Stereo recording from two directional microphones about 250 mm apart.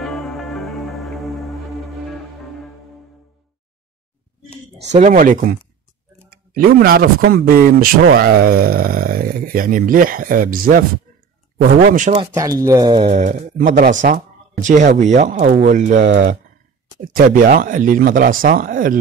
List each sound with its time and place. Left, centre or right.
0.0 s music: centre
4.9 s speech: right
12.4 s speech: centre; by 16.0 s right
16.0 s speech: right
17.1 s speech: right